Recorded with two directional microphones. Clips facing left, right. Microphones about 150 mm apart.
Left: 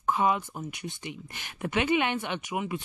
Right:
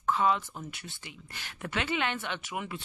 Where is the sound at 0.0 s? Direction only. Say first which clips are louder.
Left 1 dB; 15° left (ahead or behind).